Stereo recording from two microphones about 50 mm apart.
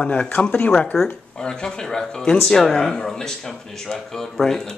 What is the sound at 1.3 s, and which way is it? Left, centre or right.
Speech, centre.